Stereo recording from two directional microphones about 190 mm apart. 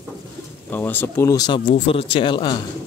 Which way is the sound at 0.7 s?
10° left (ahead or behind).